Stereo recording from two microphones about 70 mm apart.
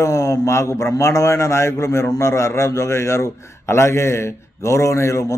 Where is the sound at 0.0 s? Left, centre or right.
Left.